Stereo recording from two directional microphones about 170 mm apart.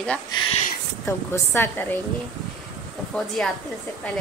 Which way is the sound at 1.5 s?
15° left (ahead or behind).